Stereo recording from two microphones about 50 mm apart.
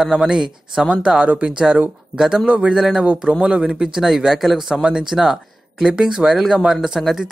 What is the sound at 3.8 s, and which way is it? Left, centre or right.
Speech, centre.